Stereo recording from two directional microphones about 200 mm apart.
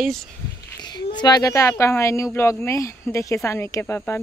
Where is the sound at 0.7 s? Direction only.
20° left (ahead or behind).